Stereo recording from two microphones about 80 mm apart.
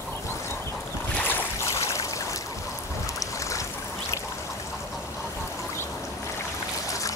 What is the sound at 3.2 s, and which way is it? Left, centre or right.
Boat, left.